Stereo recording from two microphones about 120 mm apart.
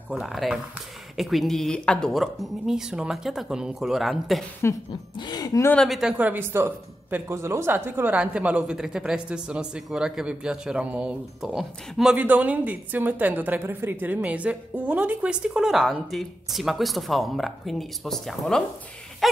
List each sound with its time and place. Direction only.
0.1 s speech: centre (ahead or behind)
4.6 s speech: 20° left (ahead or behind)
5.1 s speech: 35° left (ahead or behind)
5.8 s speech: centre (ahead or behind)
6.1 s speech: 15° right (ahead or behind); by 18.6 s centre (ahead or behind)
19.2 s a sound: centre (ahead or behind)